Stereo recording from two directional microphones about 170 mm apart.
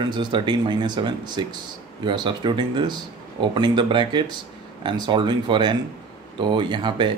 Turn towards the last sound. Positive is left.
turn(degrees=-30)  # may be behind; listen again after turning